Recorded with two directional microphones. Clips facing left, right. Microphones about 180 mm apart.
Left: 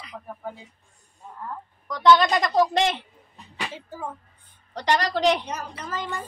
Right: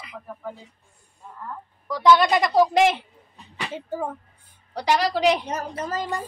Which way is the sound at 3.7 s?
55° right (ahead or behind).